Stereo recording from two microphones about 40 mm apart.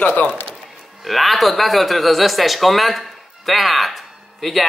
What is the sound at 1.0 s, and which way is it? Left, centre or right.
Speech, centre.